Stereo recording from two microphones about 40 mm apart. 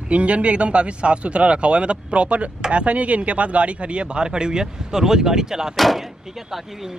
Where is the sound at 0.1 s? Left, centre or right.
Right; by 5.7 s centre.